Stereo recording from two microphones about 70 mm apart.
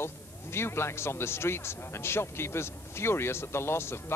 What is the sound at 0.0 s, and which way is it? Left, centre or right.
Speech, left.